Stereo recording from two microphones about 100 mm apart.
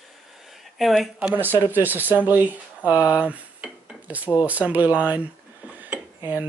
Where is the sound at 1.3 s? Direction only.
20° right (ahead or behind).